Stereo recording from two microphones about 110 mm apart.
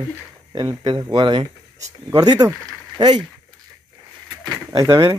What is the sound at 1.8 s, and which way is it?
Speech, 30° right (ahead or behind).